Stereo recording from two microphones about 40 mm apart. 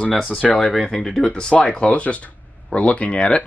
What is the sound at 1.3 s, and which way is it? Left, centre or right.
Speech, left.